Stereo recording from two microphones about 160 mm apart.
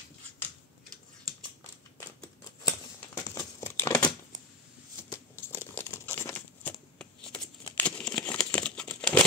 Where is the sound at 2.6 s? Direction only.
20° left (ahead or behind).